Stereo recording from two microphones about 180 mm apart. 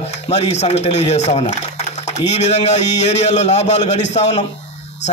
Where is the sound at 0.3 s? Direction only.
40° left (ahead or behind).